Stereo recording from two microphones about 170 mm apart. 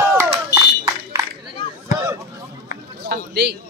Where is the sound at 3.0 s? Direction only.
70° right (ahead or behind).